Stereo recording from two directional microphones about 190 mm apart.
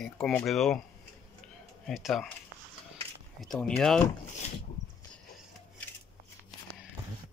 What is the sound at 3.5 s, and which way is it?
Speech, 5° left (ahead or behind).